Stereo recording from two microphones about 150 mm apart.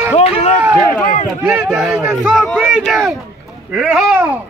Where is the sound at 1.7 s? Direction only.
5° right (ahead or behind).